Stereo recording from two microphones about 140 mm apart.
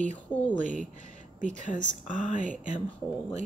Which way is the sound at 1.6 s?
65° left (ahead or behind).